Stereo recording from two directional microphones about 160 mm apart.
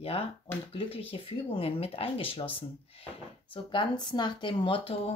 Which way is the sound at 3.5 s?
30° left (ahead or behind).